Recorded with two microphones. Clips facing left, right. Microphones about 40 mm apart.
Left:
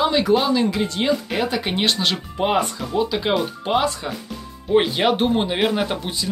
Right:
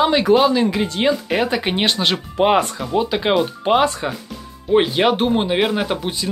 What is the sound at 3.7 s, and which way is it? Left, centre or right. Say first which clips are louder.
Speech: right 4 dB; right.